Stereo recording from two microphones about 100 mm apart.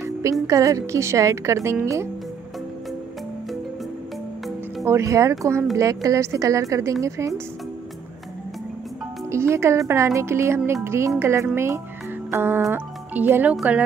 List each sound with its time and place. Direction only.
0.0 s speech: 30° right (ahead or behind)
4.8 s a woman's voice: 30° right (ahead or behind)
9.3 s a woman's voice: 25° right (ahead or behind)